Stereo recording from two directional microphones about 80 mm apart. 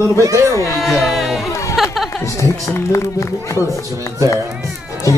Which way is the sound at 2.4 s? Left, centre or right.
Left.